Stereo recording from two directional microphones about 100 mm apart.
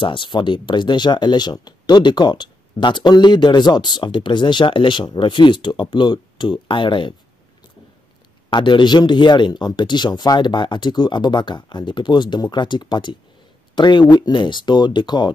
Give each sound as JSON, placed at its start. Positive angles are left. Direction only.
{"t": 0.0, "sound": "speech", "side_deg": 55}
{"t": 8.5, "sound": "speech", "side_deg": 50}